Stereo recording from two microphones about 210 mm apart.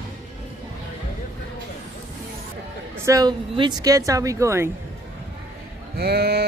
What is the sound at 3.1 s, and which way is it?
Speech, 20° right (ahead or behind).